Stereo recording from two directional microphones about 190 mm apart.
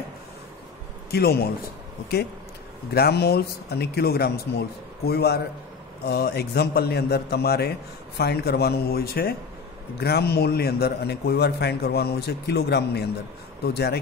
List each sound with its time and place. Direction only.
1.1 s a man's voice: 55° left (ahead or behind)
2.9 s a man's voice: 55° left (ahead or behind)